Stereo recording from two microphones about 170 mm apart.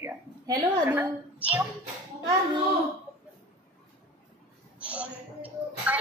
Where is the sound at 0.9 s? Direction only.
10° right (ahead or behind).